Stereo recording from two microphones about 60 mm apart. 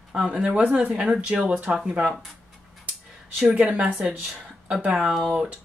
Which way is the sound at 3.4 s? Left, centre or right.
Right.